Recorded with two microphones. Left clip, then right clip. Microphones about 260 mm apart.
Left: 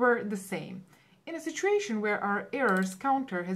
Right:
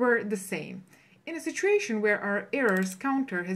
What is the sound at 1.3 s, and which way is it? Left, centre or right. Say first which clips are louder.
Speech: right 2 dB; left.